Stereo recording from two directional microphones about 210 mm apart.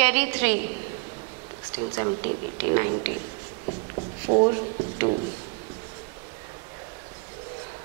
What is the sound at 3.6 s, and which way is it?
Writing, 35° right (ahead or behind).